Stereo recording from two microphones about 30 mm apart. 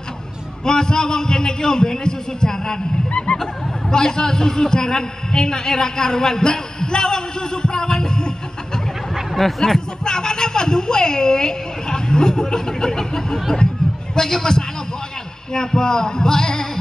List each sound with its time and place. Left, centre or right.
0.7 s a man's voice: left
3.1 s a sound: left
3.9 s a man's voice: left
9.4 s speech: centre
10.0 s a woman's voice: left